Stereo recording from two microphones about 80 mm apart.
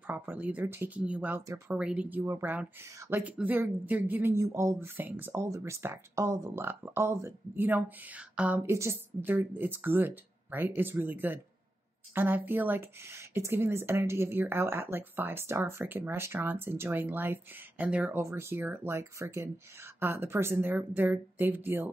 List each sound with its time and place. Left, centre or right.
0.0 s speech: right
5.3 s speech: right
6.6 s speech: right
7.6 s speech: right
8.6 s speech: right; by 18.1 s centre
18.1 s speech: right